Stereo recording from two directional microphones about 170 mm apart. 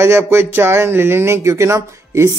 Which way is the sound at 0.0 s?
15° right (ahead or behind).